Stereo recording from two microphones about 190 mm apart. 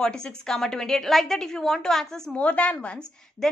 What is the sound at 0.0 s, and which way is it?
A woman's voice, 5° left (ahead or behind).